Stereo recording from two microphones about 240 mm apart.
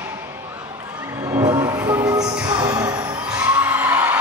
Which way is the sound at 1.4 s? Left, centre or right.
Centre.